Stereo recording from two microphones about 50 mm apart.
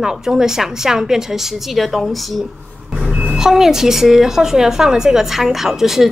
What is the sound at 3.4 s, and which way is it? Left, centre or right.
A woman's voice, centre.